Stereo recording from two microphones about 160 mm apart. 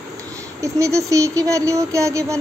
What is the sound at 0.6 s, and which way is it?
Speech, 20° right (ahead or behind).